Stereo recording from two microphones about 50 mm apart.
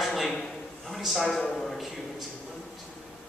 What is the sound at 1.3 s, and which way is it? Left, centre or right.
Speech, centre.